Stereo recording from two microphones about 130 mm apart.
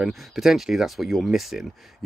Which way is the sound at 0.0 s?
Centre (ahead or behind).